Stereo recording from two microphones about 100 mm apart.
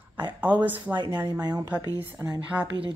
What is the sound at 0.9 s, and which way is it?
Speech, 45° right (ahead or behind).